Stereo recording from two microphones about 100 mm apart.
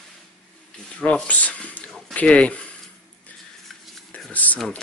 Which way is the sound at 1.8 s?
5° left (ahead or behind).